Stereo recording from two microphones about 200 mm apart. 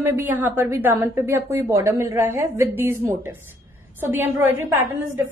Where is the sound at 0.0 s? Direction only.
10° right (ahead or behind).